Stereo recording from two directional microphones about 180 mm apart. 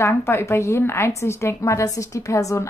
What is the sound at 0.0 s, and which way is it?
A woman's voice, 15° left (ahead or behind).